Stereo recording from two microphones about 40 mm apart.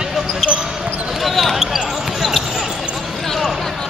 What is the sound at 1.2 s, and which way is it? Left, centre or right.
Basketball bounce, centre.